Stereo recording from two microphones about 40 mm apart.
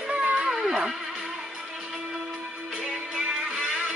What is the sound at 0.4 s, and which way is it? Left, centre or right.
Music, centre.